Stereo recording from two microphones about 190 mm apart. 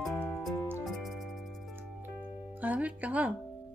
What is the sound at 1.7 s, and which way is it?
Music, 10° right (ahead or behind).